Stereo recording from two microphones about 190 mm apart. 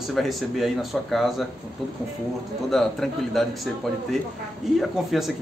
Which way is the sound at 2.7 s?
Centre (ahead or behind).